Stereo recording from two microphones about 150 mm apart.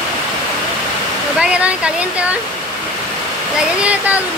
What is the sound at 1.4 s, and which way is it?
Speech, 5° right (ahead or behind).